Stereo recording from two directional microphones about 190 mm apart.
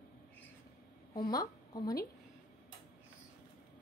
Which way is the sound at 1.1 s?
20° left (ahead or behind).